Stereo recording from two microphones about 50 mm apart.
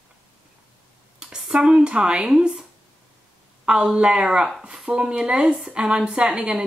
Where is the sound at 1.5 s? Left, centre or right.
Right.